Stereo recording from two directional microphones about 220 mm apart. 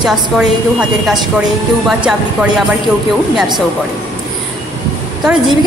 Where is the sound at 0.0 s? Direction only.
Centre (ahead or behind).